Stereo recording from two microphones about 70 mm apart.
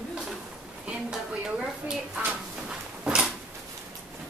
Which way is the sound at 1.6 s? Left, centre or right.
Centre.